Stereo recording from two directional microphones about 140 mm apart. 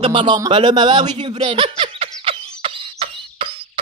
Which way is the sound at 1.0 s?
50° right (ahead or behind).